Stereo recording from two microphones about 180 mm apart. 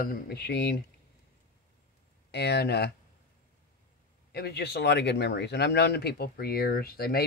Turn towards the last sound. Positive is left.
turn(degrees=60)  # may be behind; listen again after turning